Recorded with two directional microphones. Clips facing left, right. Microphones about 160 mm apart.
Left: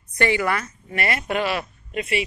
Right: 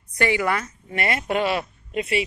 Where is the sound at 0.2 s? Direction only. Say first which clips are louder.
Even; 15° right (ahead or behind).